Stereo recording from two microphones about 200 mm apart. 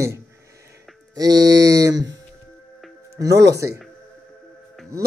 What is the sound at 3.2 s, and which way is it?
Speech, 15° right (ahead or behind).